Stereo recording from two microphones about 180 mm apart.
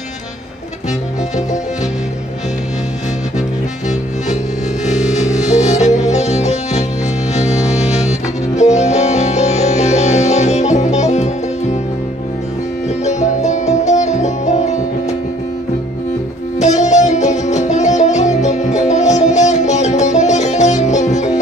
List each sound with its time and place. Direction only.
4.8 s music: 40° left (ahead or behind)
13.0 s music: 40° left (ahead or behind)
16.5 s music: 40° left (ahead or behind)